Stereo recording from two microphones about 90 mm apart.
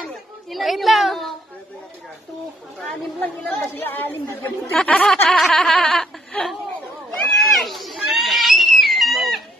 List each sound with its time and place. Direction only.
0.0 s a child's voice: centre (ahead or behind)
3.2 s speech: 20° left (ahead or behind)
4.7 s speech: 10° left (ahead or behind)
5.3 s a sound: 5° left (ahead or behind)